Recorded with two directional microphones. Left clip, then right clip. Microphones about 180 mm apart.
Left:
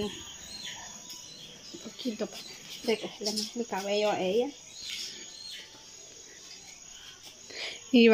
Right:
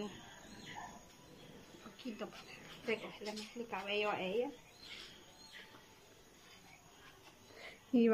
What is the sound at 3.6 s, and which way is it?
Speech, 40° left (ahead or behind).